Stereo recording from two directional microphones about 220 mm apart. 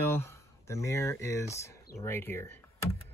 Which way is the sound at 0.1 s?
10° left (ahead or behind).